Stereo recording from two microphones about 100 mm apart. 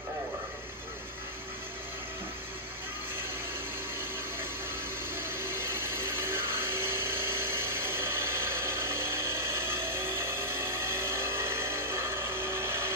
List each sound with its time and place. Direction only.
5.1 s vehicle: 25° right (ahead or behind)